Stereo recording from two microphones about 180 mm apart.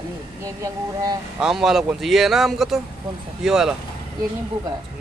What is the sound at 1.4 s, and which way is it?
Speech, centre (ahead or behind).